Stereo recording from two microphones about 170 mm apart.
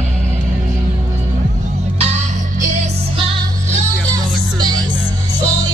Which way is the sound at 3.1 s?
35° right (ahead or behind).